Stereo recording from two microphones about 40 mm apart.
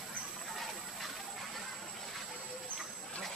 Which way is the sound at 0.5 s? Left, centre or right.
Centre.